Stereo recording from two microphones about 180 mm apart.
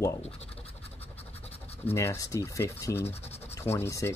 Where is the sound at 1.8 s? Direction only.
15° left (ahead or behind).